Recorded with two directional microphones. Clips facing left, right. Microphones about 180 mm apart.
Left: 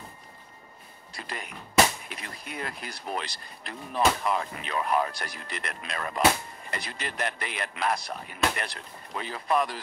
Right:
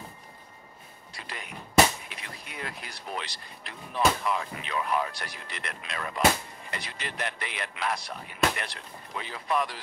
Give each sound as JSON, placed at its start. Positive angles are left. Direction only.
{"t": 1.1, "sound": "speech", "side_deg": 45}